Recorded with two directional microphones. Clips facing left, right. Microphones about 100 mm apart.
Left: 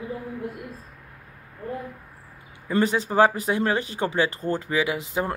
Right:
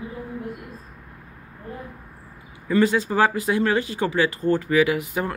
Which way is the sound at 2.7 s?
25° left (ahead or behind).